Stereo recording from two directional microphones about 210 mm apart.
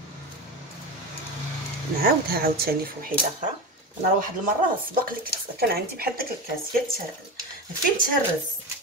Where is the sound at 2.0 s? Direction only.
45° right (ahead or behind).